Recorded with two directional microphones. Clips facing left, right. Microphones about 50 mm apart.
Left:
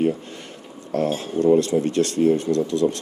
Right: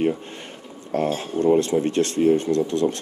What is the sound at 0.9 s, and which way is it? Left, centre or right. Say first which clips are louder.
Speech: left 1 dB; right.